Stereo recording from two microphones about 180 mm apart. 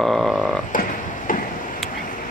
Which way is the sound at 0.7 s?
50° left (ahead or behind).